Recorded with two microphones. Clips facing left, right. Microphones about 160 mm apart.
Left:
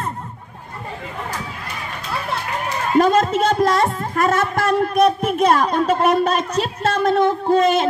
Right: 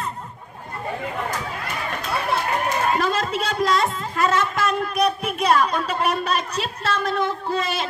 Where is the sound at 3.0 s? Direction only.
45° left (ahead or behind).